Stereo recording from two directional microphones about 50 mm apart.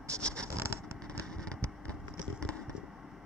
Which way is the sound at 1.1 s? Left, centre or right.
Centre.